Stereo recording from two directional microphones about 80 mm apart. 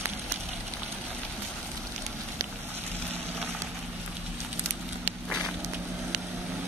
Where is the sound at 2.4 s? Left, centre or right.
Right.